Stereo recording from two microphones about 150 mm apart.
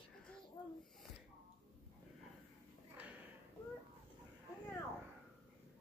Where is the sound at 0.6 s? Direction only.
25° left (ahead or behind).